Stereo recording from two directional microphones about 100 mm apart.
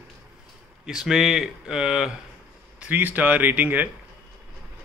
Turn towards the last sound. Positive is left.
turn(degrees=-15)  # may be behind; listen again after turning